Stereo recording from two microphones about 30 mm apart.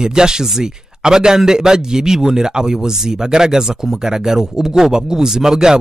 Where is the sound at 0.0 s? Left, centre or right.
Right.